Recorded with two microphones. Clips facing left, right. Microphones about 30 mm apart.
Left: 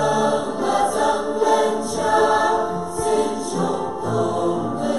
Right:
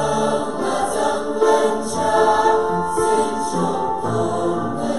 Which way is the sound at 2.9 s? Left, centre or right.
Centre.